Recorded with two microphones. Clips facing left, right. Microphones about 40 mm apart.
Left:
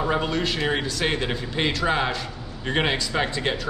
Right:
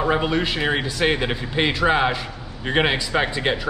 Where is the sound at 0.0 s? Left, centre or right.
Centre.